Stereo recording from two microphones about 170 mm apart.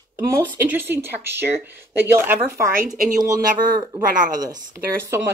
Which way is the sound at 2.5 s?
55° right (ahead or behind).